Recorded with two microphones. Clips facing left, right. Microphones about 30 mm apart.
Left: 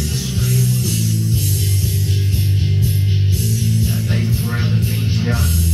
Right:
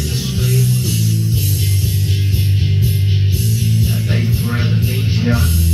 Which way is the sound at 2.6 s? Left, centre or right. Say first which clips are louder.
Right 1 dB; centre.